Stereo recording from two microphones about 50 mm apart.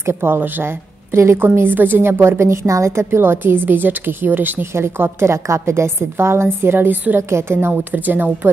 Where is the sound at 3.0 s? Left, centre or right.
Right.